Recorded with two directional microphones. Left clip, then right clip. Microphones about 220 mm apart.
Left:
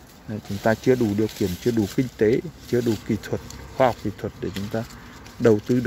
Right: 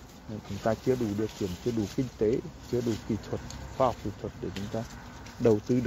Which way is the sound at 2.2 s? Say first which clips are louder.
Left 7 dB; 30° left (ahead or behind).